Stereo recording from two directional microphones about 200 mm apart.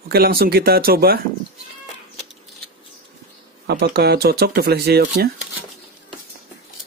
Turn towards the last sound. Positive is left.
turn(degrees=-50)  # may be behind; listen again after turning